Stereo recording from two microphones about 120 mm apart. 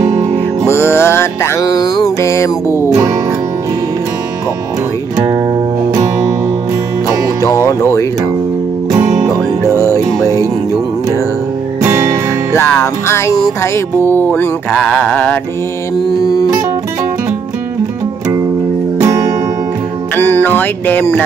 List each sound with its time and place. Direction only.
0.7 s music: 20° left (ahead or behind)
5.1 s music: 25° right (ahead or behind)
7.4 s music: 25° left (ahead or behind)
9.3 s music: 25° left (ahead or behind)
11.8 s music: 25° right (ahead or behind)
12.5 s music: 20° left (ahead or behind)
14.8 s speech: 5° left (ahead or behind)
16.2 s music: 30° left (ahead or behind)
20.2 s speech: 15° left (ahead or behind)